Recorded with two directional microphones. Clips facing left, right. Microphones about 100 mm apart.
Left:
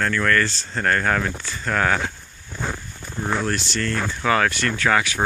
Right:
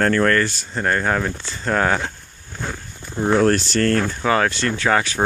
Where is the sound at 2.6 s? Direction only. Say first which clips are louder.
Left 1 dB; 10° left (ahead or behind).